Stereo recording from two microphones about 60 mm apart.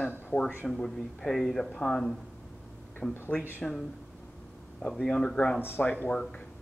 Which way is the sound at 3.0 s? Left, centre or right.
Left.